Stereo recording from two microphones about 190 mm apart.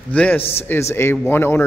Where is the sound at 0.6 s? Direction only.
15° left (ahead or behind).